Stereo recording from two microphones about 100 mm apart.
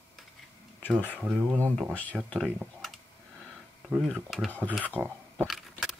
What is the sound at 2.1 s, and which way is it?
Speech, 5° right (ahead or behind).